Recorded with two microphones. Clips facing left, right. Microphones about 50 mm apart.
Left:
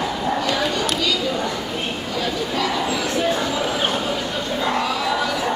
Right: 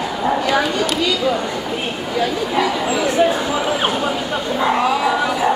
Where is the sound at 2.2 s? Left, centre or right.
Centre.